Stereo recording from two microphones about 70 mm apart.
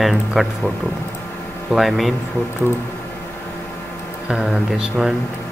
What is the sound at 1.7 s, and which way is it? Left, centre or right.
Speech, centre.